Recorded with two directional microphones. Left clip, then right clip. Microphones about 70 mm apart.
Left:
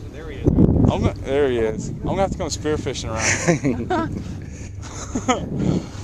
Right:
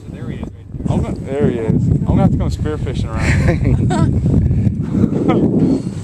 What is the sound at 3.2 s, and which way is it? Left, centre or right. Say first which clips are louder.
Speech: even; centre.